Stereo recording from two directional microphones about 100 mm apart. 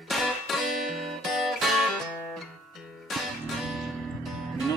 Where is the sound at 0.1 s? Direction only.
Centre (ahead or behind).